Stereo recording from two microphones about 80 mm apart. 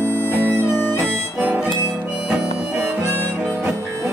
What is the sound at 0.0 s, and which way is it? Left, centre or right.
Music, right.